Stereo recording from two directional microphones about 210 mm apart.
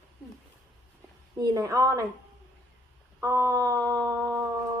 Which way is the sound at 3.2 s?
15° right (ahead or behind).